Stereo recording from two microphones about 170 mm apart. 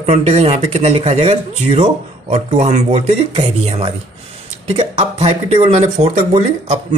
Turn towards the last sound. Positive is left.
turn(degrees=-40)  # may be behind; listen again after turning